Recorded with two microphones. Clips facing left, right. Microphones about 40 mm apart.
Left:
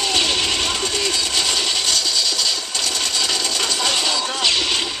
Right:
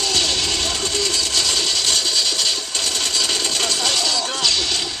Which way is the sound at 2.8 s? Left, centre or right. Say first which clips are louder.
Even; left.